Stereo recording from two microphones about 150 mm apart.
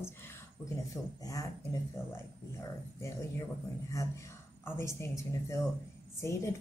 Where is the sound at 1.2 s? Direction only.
25° left (ahead or behind).